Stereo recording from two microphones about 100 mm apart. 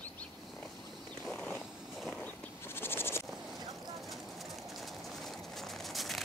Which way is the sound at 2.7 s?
20° left (ahead or behind).